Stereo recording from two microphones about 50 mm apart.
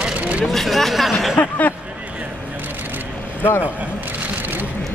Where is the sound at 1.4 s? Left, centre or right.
Left.